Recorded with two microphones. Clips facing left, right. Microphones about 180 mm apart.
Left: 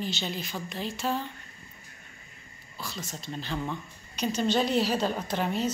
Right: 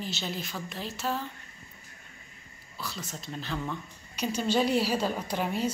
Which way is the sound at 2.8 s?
Centre (ahead or behind).